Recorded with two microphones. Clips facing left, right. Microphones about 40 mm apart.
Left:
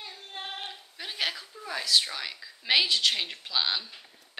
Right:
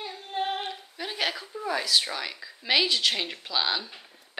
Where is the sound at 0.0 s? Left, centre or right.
Centre.